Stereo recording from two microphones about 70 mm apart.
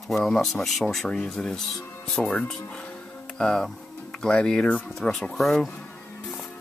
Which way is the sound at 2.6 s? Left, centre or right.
Centre.